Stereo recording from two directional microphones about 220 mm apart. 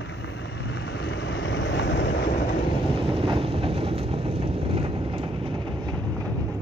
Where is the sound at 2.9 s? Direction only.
25° right (ahead or behind).